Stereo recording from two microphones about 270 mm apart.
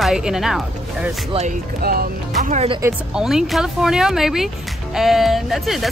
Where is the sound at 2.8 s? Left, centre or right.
Centre.